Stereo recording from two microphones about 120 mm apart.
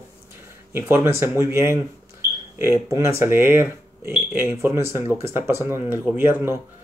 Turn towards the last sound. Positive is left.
turn(degrees=-20)  # may be behind; listen again after turning